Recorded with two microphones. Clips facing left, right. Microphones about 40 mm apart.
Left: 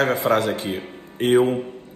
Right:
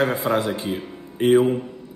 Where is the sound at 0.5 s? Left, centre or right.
Left.